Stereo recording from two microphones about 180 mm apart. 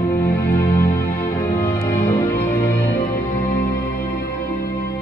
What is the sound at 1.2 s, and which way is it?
Music, 25° left (ahead or behind).